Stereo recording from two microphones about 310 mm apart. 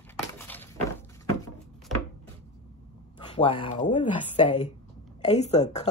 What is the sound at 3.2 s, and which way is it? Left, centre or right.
A woman's voice, centre.